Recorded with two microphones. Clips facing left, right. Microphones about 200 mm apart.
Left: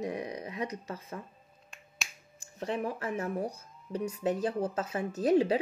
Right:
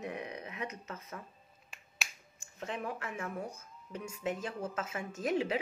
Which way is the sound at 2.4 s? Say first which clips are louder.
Left 6 dB; 35° left (ahead or behind).